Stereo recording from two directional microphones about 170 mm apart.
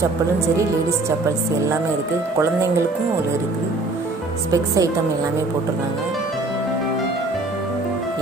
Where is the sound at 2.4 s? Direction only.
15° right (ahead or behind).